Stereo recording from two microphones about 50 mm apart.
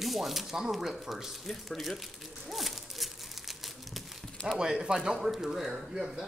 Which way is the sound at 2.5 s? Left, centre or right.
Centre.